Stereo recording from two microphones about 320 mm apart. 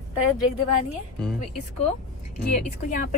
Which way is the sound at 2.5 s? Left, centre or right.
Left.